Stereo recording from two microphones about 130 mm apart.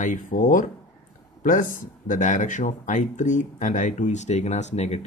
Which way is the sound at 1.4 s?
90° left.